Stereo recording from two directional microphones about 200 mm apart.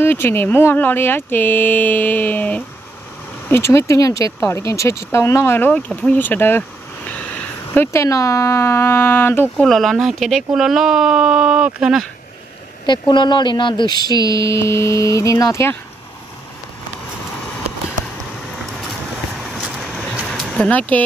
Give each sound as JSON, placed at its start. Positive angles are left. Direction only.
{"t": 0.0, "sound": "speech", "side_deg": 10}
{"t": 12.8, "sound": "speech", "side_deg": 25}
{"t": 18.9, "sound": "a sound", "side_deg": -5}